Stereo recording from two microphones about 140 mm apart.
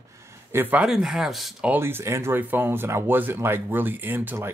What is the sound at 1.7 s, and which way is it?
Speech, 15° right (ahead or behind).